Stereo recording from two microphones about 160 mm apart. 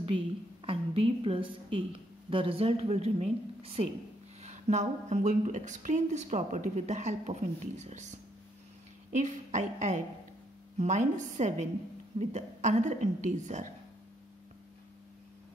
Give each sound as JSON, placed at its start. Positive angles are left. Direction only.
{"t": 0.7, "sound": "a woman's voice", "side_deg": -35}
{"t": 9.1, "sound": "speech", "side_deg": -50}